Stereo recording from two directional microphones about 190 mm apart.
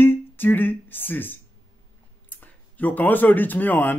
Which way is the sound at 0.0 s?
10° left (ahead or behind).